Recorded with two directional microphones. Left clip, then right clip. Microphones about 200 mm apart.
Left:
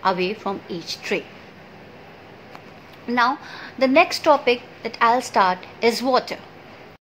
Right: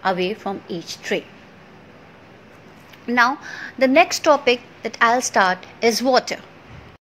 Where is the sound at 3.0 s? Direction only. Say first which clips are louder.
Right 2 dB; 15° right (ahead or behind).